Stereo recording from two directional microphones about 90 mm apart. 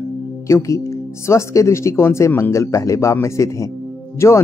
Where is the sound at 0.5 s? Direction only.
35° left (ahead or behind).